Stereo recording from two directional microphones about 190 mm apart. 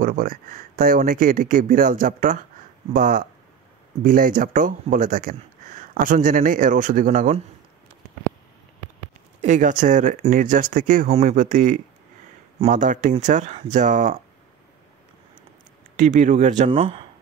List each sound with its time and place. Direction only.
0.0 s speech: 45° right (ahead or behind)
9.4 s speech: 40° right (ahead or behind)
16.0 s speech: 40° right (ahead or behind)